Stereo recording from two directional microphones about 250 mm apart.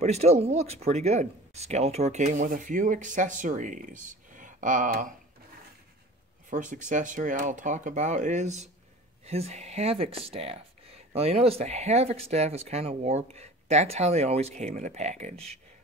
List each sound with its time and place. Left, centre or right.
0.0 s speech: right
6.5 s speech: right